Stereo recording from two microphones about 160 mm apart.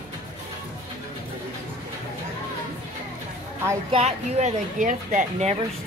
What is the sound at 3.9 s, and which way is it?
Speech, 40° right (ahead or behind).